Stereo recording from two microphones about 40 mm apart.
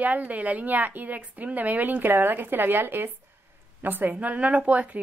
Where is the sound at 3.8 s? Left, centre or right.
Right.